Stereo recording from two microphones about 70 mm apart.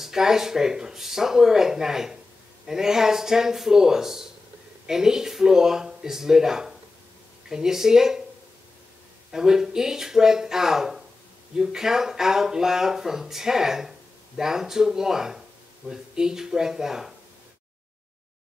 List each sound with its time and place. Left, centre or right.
0.0 s speech: centre
9.3 s speech: centre